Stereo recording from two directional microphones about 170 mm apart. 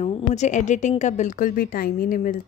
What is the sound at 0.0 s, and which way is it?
A woman's voice, 40° left (ahead or behind).